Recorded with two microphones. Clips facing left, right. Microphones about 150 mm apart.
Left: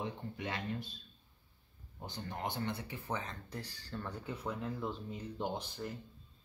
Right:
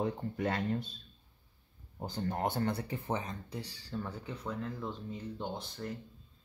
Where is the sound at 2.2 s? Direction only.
50° right (ahead or behind).